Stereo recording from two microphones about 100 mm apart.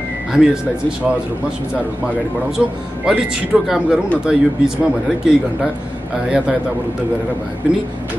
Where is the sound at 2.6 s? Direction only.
5° right (ahead or behind).